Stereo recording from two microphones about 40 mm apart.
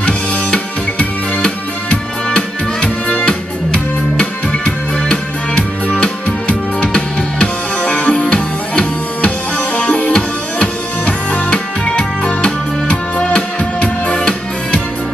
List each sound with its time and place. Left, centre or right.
0.0 s music: left
6.0 s music: left